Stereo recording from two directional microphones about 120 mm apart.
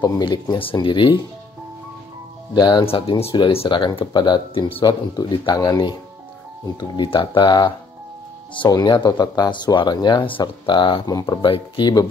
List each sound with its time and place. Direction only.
0.0 s speech: 40° left (ahead or behind)
2.5 s speech: 40° left (ahead or behind)
3.3 s speech: 40° left (ahead or behind)